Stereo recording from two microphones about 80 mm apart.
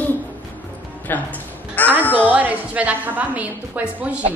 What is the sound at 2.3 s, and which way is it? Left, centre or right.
A woman's voice, centre.